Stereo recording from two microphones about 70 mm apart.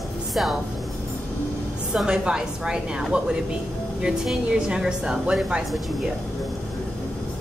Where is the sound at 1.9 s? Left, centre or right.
Centre.